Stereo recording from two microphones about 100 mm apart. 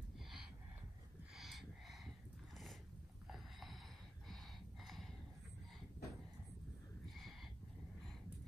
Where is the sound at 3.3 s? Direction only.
Centre (ahead or behind).